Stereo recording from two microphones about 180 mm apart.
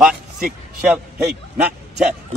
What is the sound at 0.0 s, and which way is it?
A man's voice, 5° right (ahead or behind).